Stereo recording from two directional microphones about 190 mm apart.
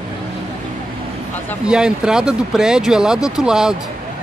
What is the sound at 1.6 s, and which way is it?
Speech, 5° right (ahead or behind).